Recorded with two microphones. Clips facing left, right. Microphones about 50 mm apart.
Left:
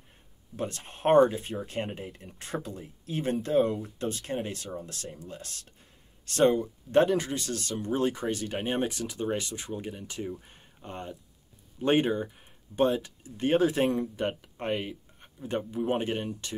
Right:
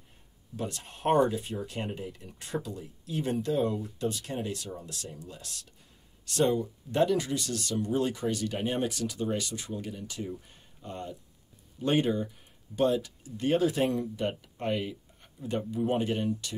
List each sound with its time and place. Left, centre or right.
0.6 s speech: left